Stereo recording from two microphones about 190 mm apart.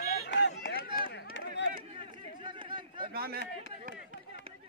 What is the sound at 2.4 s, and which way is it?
Chatter, 25° right (ahead or behind).